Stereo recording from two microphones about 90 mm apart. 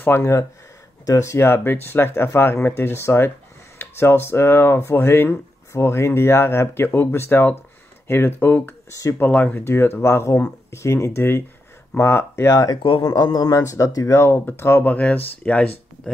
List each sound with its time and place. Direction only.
0.2 s speech: 35° left (ahead or behind)
12.8 s speech: 75° left (ahead or behind)
13.2 s a man's voice: 50° left (ahead or behind)
13.6 s speech: 35° left (ahead or behind); by 15.7 s 15° left (ahead or behind)